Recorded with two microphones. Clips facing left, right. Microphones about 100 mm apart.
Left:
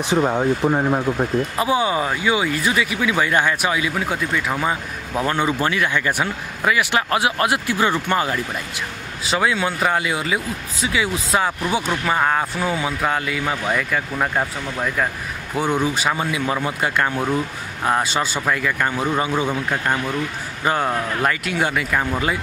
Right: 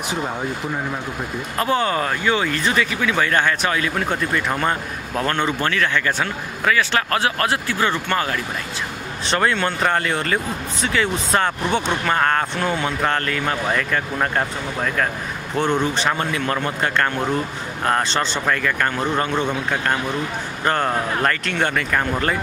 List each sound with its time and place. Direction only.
0.1 s speech: 30° left (ahead or behind)
1.6 s speech: 10° left (ahead or behind)
9.2 s speech: 5° left (ahead or behind)
20.6 s speech: 5° left (ahead or behind)